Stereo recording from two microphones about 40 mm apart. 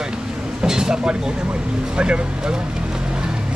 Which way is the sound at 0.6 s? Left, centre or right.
Centre.